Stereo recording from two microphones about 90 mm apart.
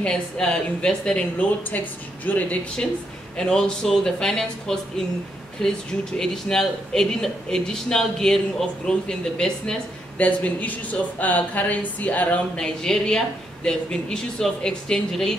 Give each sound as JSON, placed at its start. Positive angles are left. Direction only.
{"t": 0.0, "sound": "speech", "side_deg": 10}
{"t": 2.2, "sound": "speech", "side_deg": 20}
{"t": 3.3, "sound": "speech", "side_deg": 5}
{"t": 12.8, "sound": "speech", "side_deg": 5}